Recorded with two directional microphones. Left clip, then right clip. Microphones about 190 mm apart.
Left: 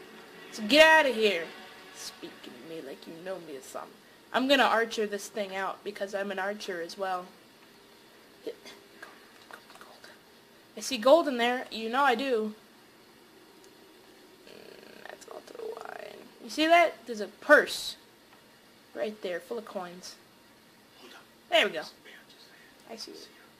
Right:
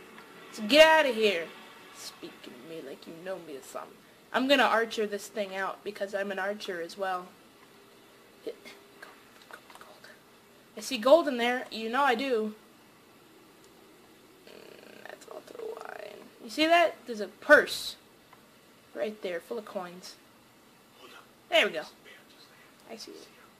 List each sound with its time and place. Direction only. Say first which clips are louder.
0.5 s a woman's voice: even; centre (ahead or behind)
2.0 s a sound: even; centre (ahead or behind)
3.7 s a woman's voice: even; centre (ahead or behind)
8.5 s speech: even; centre (ahead or behind)
10.8 s a woman's voice: even; centre (ahead or behind)
15.0 s purr: even; centre (ahead or behind)
18.9 s a woman's voice: even; centre (ahead or behind)
21.5 s speech: even; centre (ahead or behind)
22.8 s speech: left 1 dB; centre (ahead or behind)